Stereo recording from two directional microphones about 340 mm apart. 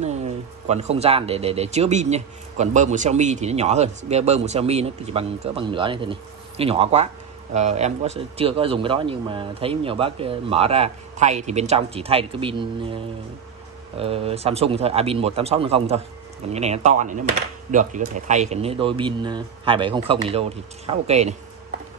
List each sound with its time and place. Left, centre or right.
0.0 s speech: centre